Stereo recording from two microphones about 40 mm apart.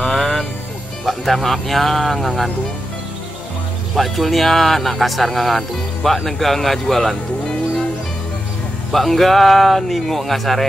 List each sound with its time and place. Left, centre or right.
0.0 s music: centre
1.0 s a man's voice: centre
3.9 s a man's voice: centre
8.9 s a man's voice: centre